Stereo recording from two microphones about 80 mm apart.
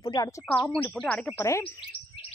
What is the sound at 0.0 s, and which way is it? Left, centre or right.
Speech, left.